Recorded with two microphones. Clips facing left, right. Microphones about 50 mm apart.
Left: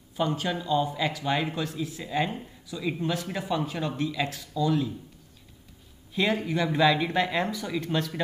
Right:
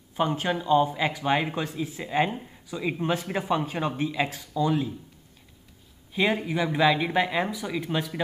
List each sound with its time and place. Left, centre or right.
0.1 s speech: right
6.1 s speech: centre